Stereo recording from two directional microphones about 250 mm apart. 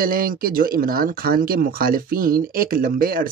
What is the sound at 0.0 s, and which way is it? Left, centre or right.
Speech, right.